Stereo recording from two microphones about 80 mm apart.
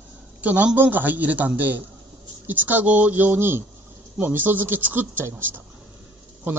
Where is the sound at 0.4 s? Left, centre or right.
Centre.